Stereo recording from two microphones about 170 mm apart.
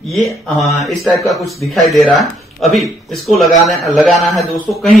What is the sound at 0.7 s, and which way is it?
Speech, centre (ahead or behind).